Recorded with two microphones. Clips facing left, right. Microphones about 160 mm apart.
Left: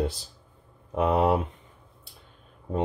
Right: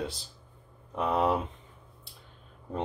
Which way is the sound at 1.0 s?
65° left (ahead or behind).